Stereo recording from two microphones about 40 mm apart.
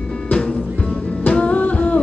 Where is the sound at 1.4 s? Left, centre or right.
Left.